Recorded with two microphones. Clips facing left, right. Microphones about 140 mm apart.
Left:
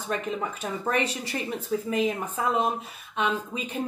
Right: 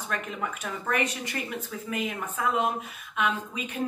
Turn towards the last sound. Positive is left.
turn(degrees=35)  # may be behind; listen again after turning